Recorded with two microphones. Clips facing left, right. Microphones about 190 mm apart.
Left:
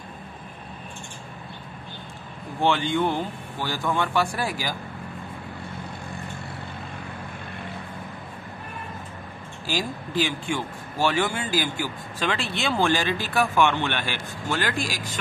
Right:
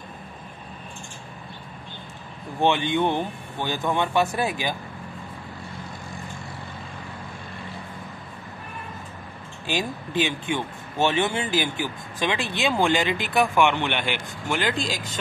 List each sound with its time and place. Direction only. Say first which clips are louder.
2.6 s speech: right 1 dB; 20° right (ahead or behind)
9.7 s speech: right 1 dB; 20° right (ahead or behind)